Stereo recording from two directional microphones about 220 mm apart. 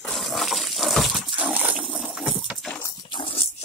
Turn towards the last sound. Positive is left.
turn(degrees=25)  # may be behind; listen again after turning